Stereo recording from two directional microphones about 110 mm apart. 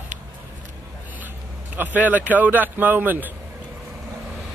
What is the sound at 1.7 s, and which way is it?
Speech, 15° right (ahead or behind).